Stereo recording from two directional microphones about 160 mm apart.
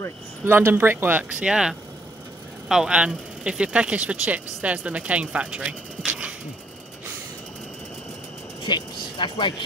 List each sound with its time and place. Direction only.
0.5 s speech: 15° right (ahead or behind)
8.6 s speech: 30° left (ahead or behind)